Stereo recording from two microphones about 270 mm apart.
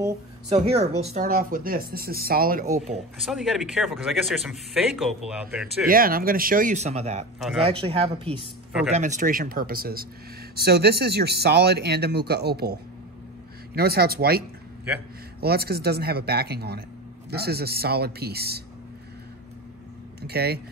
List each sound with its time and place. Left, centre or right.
0.0 s speech: centre
3.2 s speech: centre
5.9 s speech: right
7.3 s speech: centre
7.6 s speech: right
13.7 s speech: right
15.4 s speech: right
20.2 s speech: right